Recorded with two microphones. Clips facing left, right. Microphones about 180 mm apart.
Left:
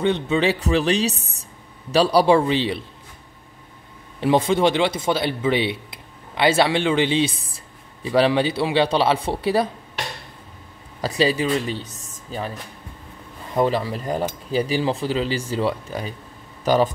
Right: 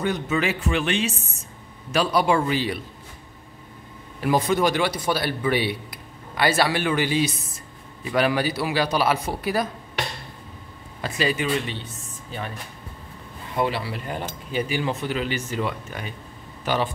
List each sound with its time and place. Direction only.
0.0 s speech: 30° left (ahead or behind)
4.2 s a man's voice: 25° left (ahead or behind)
11.0 s speech: 35° left (ahead or behind)
13.6 s speech: 40° left (ahead or behind)